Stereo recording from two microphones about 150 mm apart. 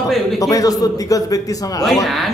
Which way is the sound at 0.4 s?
20° left (ahead or behind).